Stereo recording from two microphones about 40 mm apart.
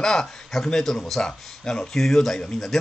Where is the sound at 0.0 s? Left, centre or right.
Centre.